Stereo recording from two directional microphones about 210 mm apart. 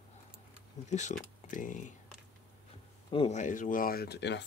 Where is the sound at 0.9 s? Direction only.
35° left (ahead or behind).